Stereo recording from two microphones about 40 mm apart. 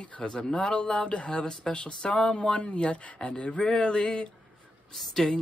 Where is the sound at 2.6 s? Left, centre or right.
Left.